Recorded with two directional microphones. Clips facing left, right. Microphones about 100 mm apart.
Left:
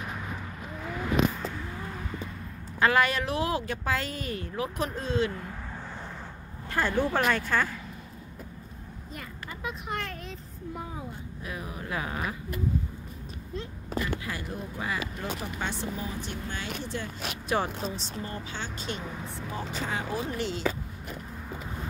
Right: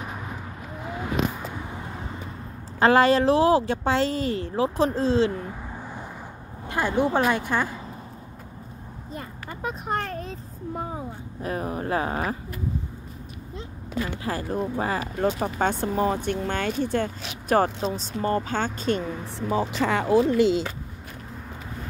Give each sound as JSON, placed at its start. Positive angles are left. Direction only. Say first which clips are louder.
{"t": 0.7, "sound": "vehicle", "louder": "even", "side_deg": -20}
{"t": 2.8, "sound": "a woman's voice", "louder": "right 7 dB", "side_deg": -30}
{"t": 6.7, "sound": "a woman's voice", "louder": "right 4 dB", "side_deg": -15}
{"t": 9.1, "sound": "a sound", "louder": "right 5 dB", "side_deg": -35}
{"t": 11.4, "sound": "speech", "louder": "right 10 dB", "side_deg": -45}
{"t": 13.9, "sound": "a sound", "louder": "right 3 dB", "side_deg": 40}
{"t": 14.5, "sound": "speech", "louder": "right 9 dB", "side_deg": -40}
{"t": 15.1, "sound": "speech", "louder": "right 10 dB", "side_deg": -50}
{"t": 19.2, "sound": "speech", "louder": "right 10 dB", "side_deg": -80}